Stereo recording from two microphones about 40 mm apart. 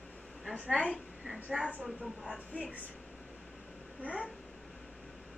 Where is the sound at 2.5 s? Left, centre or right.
Left.